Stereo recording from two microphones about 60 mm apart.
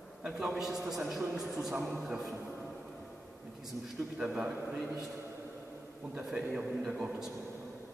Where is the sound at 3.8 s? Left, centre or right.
Centre.